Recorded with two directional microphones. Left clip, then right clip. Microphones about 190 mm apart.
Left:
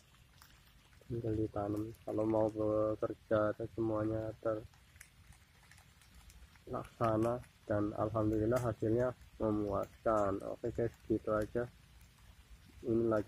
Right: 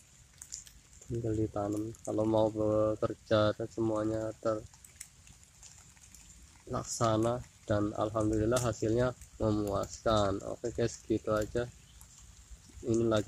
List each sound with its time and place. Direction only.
1.2 s speech: 15° right (ahead or behind)
6.7 s speech: 10° right (ahead or behind)
12.8 s speech: 5° right (ahead or behind)